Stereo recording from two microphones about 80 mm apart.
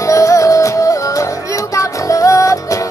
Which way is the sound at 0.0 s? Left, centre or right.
Left.